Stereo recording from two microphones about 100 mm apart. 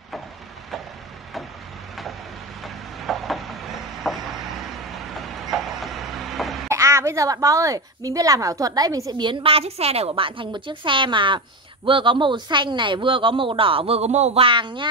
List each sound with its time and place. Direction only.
2.6 s a sound: centre (ahead or behind)
5.5 s vehicle: centre (ahead or behind)
6.2 s cough: centre (ahead or behind)
6.7 s a woman's voice: 30° right (ahead or behind)
9.2 s a woman's voice: 60° right (ahead or behind)